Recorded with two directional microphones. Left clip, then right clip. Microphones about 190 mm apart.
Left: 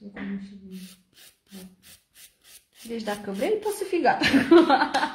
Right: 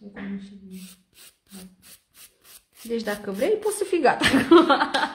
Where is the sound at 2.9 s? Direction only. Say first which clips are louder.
Right 3 dB; 25° right (ahead or behind).